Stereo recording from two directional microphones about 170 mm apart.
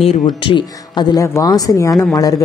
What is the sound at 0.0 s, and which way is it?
A woman's voice, 35° left (ahead or behind).